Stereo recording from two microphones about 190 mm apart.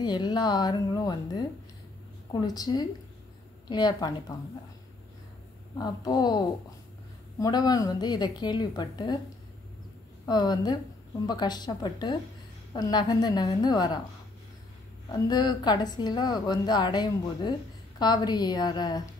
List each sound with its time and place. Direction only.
0.0 s a woman's voice: 20° left (ahead or behind)
2.4 s a woman's voice: 20° left (ahead or behind)
5.8 s a woman's voice: 20° left (ahead or behind)
10.2 s a woman's voice: 20° left (ahead or behind)
15.0 s a woman's voice: 20° left (ahead or behind)